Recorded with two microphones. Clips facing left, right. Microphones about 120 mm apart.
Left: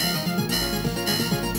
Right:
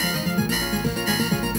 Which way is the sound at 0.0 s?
45° right (ahead or behind).